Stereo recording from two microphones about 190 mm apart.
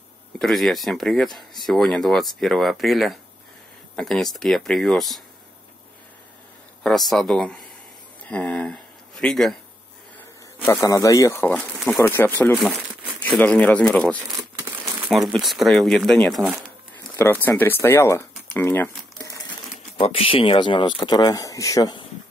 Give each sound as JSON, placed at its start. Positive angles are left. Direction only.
{"t": 0.4, "sound": "speech", "side_deg": 0}
{"t": 6.8, "sound": "speech", "side_deg": 0}
{"t": 10.1, "sound": "a sound", "side_deg": 10}
{"t": 11.4, "sound": "speech", "side_deg": 5}
{"t": 12.6, "sound": "speech", "side_deg": 0}
{"t": 14.3, "sound": "speech", "side_deg": -15}
{"t": 17.2, "sound": "speech", "side_deg": 10}
{"t": 20.0, "sound": "speech", "side_deg": 30}